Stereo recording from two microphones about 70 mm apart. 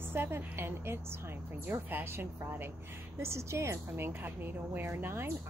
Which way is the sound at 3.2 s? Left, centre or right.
Right.